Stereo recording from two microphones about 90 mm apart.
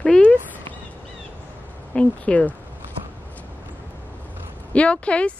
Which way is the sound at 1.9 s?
15° left (ahead or behind).